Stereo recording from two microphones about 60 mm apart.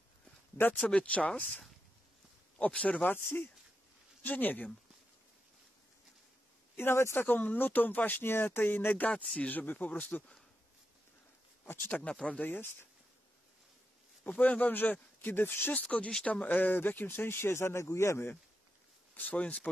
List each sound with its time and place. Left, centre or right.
0.6 s speech: left
2.6 s speech: left
4.2 s speech: left
6.8 s speech: left
7.2 s speech: left
11.6 s speech: left
11.9 s speech: left
14.4 s speech: left
15.7 s speech: left
16.3 s speech: left
19.1 s speech: left